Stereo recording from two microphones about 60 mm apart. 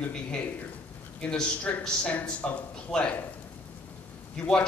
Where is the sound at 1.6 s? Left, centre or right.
Centre.